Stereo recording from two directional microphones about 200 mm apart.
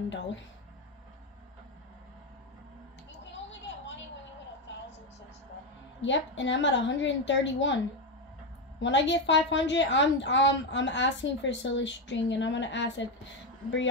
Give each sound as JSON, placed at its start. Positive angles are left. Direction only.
{"t": 5.9, "sound": "a woman's voice", "side_deg": 65}